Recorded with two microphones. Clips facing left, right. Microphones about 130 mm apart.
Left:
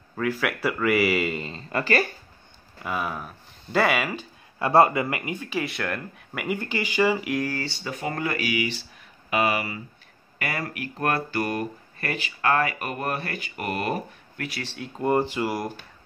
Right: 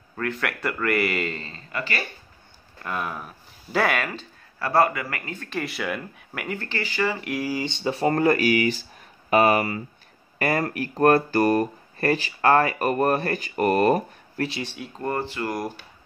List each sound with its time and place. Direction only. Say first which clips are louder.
0.1 s speech: left 2 dB; 5° left (ahead or behind)
1.7 s speech: left 6 dB; 40° left (ahead or behind)
2.8 s speech: left 1 dB; 5° left (ahead or behind)
4.6 s speech: left 3 dB; 20° left (ahead or behind)
5.6 s speech: right 2 dB; centre (ahead or behind)
7.2 s speech: even; 5° right (ahead or behind)
7.6 s speech: right 7 dB; 25° right (ahead or behind)
14.8 s speech: left 6 dB; 10° left (ahead or behind)